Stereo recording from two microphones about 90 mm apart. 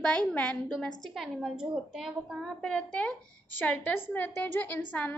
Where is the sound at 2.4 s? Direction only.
10° left (ahead or behind).